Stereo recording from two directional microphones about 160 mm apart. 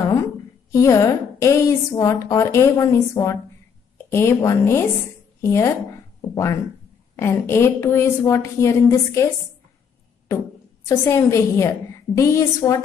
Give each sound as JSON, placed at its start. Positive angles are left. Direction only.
{"t": 0.7, "sound": "a woman's voice", "side_deg": 20}
{"t": 10.9, "sound": "a woman's voice", "side_deg": 20}